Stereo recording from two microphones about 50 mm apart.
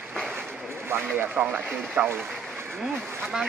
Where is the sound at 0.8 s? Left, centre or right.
Right.